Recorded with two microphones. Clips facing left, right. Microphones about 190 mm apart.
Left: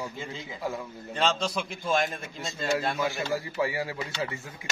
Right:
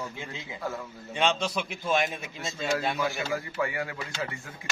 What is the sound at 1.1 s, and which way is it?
A man's voice, 10° right (ahead or behind).